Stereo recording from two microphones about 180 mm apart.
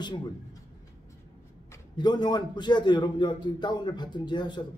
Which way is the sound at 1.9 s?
25° left (ahead or behind).